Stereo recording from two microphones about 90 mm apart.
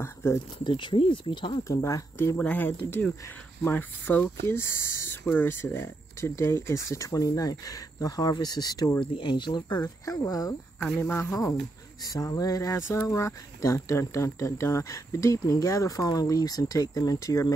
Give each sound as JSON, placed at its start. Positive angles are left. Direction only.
{"t": 0.0, "sound": "a sound", "side_deg": 30}
{"t": 0.7, "sound": "speech", "side_deg": 65}
{"t": 1.6, "sound": "speech", "side_deg": 35}
{"t": 9.0, "sound": "speech", "side_deg": 65}
{"t": 11.0, "sound": "speech", "side_deg": 25}
{"t": 12.0, "sound": "speech", "side_deg": 45}